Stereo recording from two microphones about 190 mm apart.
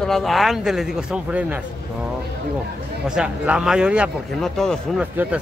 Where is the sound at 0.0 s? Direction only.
Centre (ahead or behind).